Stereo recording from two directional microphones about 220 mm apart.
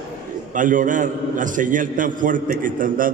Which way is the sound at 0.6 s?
35° right (ahead or behind).